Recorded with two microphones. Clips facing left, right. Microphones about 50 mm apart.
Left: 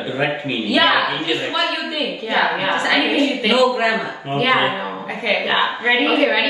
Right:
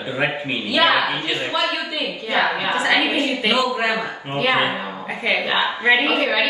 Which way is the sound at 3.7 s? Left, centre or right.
Left.